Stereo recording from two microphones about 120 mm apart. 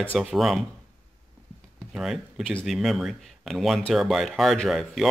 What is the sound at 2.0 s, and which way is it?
Speech, 5° right (ahead or behind).